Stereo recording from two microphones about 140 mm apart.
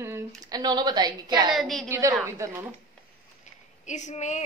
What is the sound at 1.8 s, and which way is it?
Speech, 20° right (ahead or behind).